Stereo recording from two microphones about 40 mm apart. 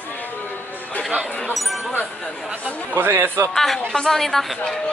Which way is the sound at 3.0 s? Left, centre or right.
Right.